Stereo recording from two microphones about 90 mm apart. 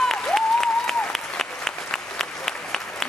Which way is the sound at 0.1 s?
5° left (ahead or behind).